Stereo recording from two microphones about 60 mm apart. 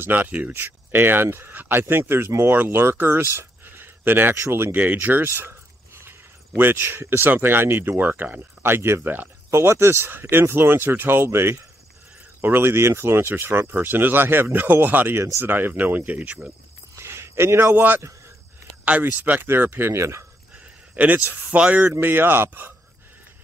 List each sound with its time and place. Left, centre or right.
0.0 s speech: right
4.4 s speech: right
4.7 s a sound: right
7.2 s speech: right
9.0 s speech: right
16.9 s a sound: right
17.7 s speech: right
19.4 s speech: right
19.9 s speech: right
20.5 s a sound: right
21.5 s speech: right
22.0 s speech: right